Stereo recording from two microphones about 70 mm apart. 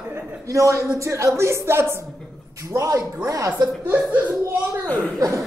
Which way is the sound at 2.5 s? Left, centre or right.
Right.